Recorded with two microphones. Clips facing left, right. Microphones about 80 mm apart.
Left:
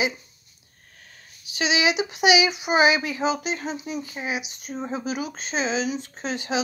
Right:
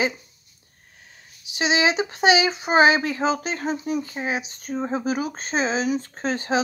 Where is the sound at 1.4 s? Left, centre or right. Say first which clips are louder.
Right 2 dB; right.